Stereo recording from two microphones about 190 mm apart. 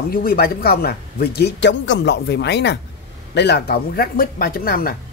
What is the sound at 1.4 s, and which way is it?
Speech, 65° left (ahead or behind).